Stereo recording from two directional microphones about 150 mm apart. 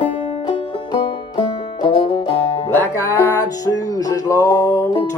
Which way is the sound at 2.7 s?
20° left (ahead or behind).